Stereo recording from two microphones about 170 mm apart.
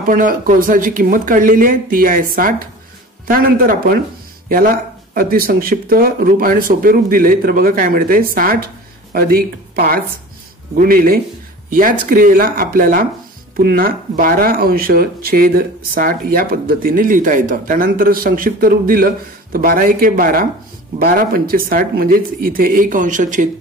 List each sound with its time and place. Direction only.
0.0 s speech: 55° right (ahead or behind)